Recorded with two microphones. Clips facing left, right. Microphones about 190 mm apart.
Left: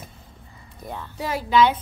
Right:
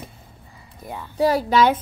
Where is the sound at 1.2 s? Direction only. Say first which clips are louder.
Right 3 dB; 40° right (ahead or behind).